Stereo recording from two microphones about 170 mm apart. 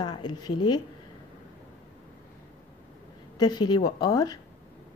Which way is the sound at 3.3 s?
25° left (ahead or behind).